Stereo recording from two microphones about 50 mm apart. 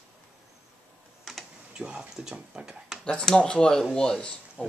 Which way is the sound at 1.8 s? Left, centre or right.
Centre.